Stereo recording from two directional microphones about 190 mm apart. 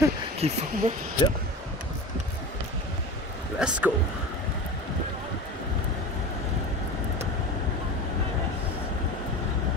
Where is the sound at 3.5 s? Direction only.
5° right (ahead or behind).